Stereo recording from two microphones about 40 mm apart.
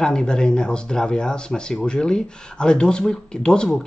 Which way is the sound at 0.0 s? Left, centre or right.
Left.